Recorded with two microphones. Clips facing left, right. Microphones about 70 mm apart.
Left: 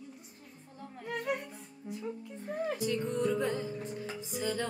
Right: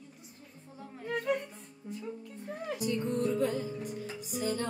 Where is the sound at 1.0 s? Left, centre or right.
Centre.